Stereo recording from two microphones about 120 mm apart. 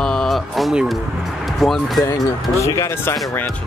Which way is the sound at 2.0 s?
25° left (ahead or behind).